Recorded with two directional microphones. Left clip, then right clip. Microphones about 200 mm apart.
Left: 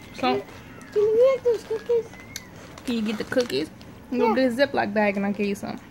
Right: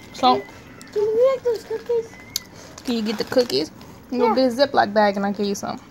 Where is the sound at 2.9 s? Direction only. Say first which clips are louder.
Right 4 dB; 10° right (ahead or behind).